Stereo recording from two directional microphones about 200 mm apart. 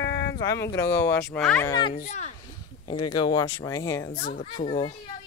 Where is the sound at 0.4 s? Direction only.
15° left (ahead or behind).